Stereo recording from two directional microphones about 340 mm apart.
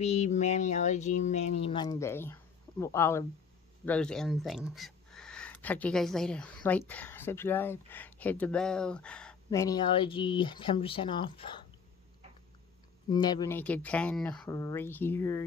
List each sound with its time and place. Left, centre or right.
0.0 s speech: centre
13.1 s speech: centre